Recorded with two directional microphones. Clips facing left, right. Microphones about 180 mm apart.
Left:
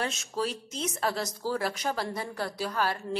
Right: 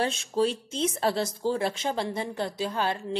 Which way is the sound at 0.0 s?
30° right (ahead or behind).